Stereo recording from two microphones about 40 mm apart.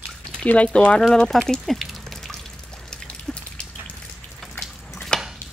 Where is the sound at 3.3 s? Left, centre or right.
Centre.